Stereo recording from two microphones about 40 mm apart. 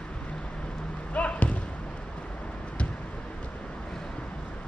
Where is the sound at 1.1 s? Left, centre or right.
Left.